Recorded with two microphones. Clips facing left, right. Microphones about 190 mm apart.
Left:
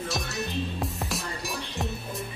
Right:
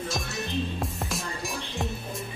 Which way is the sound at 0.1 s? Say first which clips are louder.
Even; centre (ahead or behind).